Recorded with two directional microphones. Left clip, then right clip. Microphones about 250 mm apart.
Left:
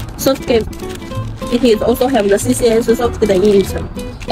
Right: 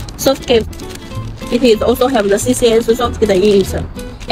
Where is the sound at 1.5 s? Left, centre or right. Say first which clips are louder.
Right 1 dB; centre.